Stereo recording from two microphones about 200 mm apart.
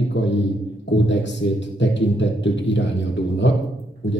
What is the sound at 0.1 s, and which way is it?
A man's voice, 65° left (ahead or behind).